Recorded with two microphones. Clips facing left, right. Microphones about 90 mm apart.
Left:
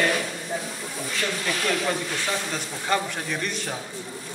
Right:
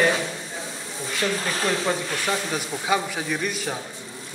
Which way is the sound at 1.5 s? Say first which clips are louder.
Left 2 dB; 30° right (ahead or behind).